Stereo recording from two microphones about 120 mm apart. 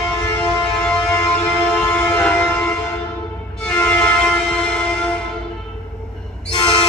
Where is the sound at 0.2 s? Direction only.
10° left (ahead or behind).